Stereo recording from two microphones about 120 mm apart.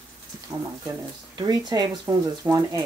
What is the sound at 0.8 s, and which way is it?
Speech, 30° right (ahead or behind).